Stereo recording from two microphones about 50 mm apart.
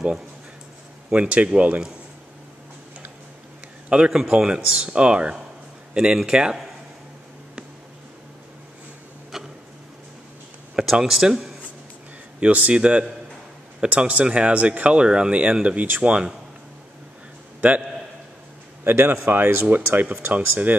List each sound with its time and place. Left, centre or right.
1.1 s speech: right
3.9 s speech: right
9.3 s tick-tock: centre
10.9 s speech: centre
12.4 s speech: right
17.6 s a man's voice: right
18.9 s speech: right